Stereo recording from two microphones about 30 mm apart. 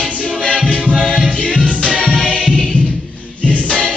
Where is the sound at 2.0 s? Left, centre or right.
Left.